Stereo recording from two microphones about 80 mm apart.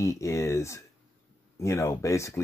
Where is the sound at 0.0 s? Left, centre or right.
Left.